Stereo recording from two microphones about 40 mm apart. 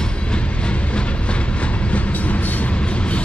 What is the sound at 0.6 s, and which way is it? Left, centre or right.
Train, left.